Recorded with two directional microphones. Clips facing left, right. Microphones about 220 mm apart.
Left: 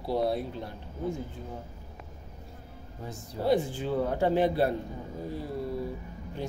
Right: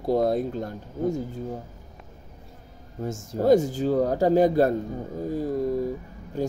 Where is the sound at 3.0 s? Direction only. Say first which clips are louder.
Right 7 dB; 45° right (ahead or behind).